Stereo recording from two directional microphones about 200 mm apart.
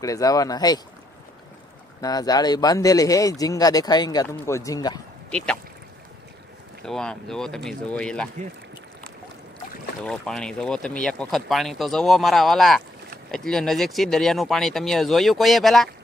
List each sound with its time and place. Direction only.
0.0 s speech: 15° left (ahead or behind)
2.0 s speech: 20° left (ahead or behind)
6.9 s speech: 5° left (ahead or behind)
10.0 s speech: 5° left (ahead or behind)